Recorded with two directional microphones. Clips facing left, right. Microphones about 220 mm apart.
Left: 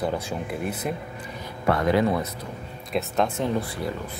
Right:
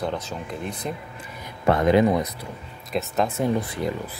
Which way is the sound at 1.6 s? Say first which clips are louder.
Right 3 dB; 20° right (ahead or behind).